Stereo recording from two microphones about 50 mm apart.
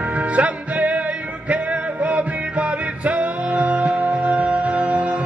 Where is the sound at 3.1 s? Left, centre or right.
Right.